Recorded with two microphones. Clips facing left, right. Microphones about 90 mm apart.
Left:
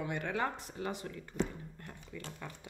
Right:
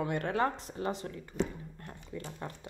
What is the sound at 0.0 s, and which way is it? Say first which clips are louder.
Speech: right 4 dB; 50° right (ahead or behind).